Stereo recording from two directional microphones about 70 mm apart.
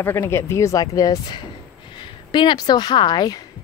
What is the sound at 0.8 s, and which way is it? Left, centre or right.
Speech, left.